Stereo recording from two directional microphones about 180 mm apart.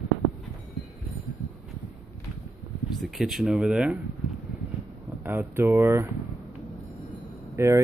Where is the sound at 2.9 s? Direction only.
Centre (ahead or behind).